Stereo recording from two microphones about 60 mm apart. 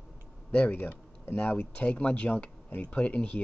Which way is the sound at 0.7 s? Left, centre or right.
Left.